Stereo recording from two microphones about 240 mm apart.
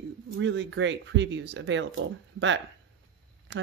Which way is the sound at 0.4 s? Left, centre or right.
Right.